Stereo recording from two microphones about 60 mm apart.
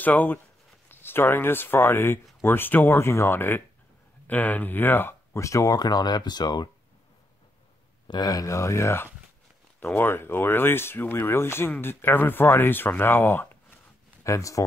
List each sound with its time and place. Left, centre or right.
0.0 s speech: left
4.3 s speech: left
5.3 s speech: left
8.2 s speech: left
9.8 s speech: left
14.2 s speech: left